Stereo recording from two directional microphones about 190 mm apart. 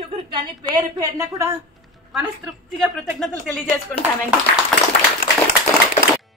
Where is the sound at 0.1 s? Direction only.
25° right (ahead or behind).